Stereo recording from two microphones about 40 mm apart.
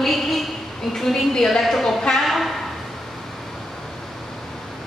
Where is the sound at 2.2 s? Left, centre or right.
Centre.